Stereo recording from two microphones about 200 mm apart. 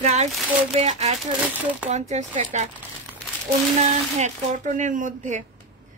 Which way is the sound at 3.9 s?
35° right (ahead or behind).